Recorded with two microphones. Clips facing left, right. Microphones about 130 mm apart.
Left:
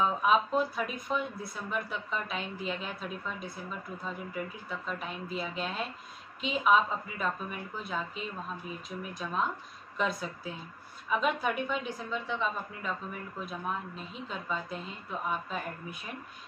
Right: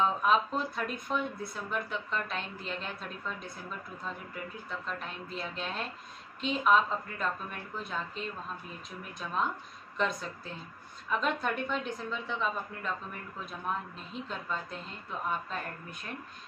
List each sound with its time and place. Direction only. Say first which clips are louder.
0.0 s speech: left 1 dB; 5° left (ahead or behind)